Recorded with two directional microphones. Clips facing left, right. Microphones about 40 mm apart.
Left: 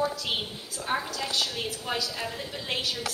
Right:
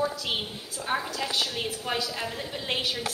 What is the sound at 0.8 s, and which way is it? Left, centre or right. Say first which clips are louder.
A woman's voice: right 1 dB; centre.